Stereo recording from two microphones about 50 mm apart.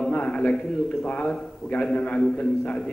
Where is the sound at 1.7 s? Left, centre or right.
Left.